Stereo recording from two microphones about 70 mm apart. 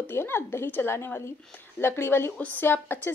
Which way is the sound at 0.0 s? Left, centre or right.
Left.